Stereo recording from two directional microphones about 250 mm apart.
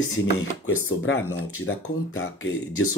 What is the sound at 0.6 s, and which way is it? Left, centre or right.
Speech, left.